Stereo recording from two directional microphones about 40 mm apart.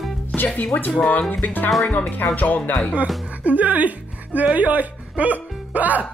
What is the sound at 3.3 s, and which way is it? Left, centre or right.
Speech, right.